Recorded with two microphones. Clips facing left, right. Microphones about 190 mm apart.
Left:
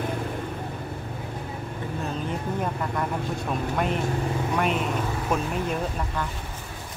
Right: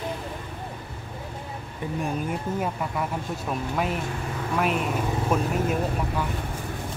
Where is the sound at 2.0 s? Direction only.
10° right (ahead or behind).